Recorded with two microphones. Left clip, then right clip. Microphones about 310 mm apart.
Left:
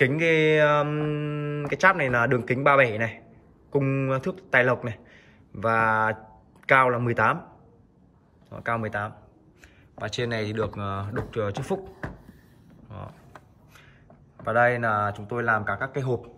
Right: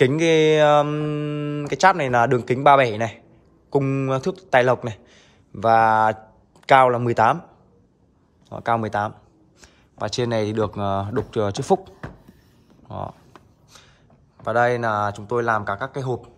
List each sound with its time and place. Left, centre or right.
0.0 s speech: centre
8.5 s speech: centre
12.8 s a sound: centre
14.4 s speech: centre